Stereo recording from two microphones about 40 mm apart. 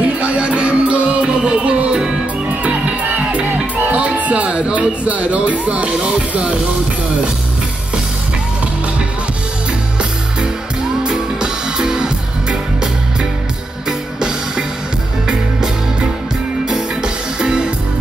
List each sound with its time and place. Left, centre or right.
0.0 s music: right
11.1 s music: centre
16.6 s music: centre